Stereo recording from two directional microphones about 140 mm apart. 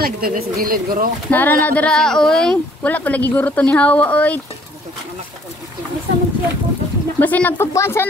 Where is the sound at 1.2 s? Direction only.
10° left (ahead or behind).